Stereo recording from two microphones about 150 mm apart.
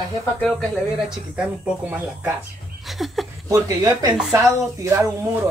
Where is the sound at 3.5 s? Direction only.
20° right (ahead or behind).